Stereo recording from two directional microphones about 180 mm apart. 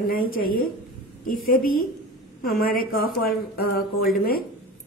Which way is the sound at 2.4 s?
55° left (ahead or behind).